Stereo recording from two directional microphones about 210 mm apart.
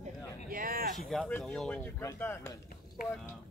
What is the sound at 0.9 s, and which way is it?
A man's voice, centre (ahead or behind).